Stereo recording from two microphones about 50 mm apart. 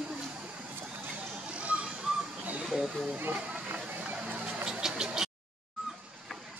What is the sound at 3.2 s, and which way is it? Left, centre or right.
Speech, right.